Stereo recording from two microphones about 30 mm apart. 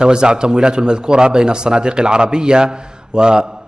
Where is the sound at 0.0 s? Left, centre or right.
Right.